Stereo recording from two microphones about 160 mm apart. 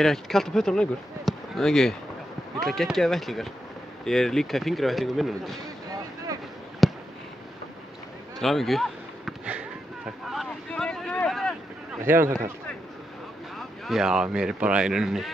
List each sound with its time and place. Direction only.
0.0 s speech: centre (ahead or behind)
6.8 s a sound: centre (ahead or behind)
8.4 s a sound: centre (ahead or behind)
10.2 s boat: centre (ahead or behind)
12.0 s a man's voice: 15° right (ahead or behind)
13.6 s speech: centre (ahead or behind)